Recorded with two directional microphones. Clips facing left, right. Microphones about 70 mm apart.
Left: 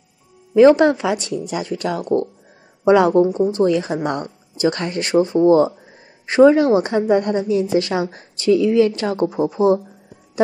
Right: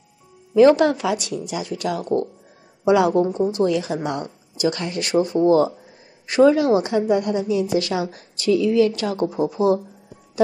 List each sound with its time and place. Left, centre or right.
0.6 s a woman's voice: left